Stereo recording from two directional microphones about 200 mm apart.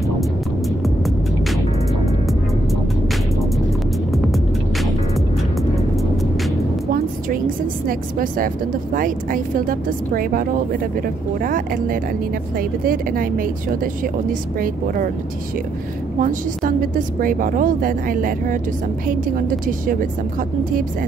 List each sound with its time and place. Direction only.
4.1 s music: centre (ahead or behind)
7.2 s a woman's voice: 45° right (ahead or behind)
16.2 s a woman's voice: 40° right (ahead or behind)